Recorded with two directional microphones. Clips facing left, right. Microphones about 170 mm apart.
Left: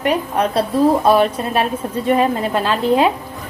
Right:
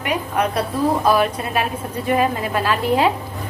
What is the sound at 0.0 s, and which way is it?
A woman's voice, 30° left (ahead or behind).